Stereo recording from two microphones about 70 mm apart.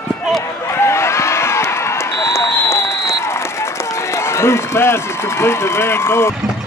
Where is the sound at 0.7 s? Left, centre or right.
Left.